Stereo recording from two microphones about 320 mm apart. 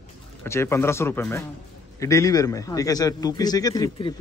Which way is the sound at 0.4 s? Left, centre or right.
Centre.